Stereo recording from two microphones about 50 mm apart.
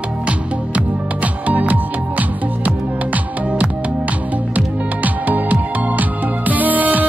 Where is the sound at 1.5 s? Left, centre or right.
Right.